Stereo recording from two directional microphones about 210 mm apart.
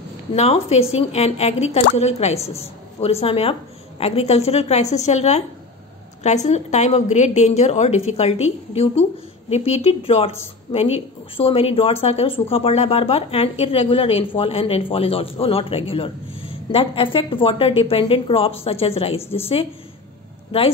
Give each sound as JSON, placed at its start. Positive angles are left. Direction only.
{"t": 0.3, "sound": "a woman's voice", "side_deg": 30}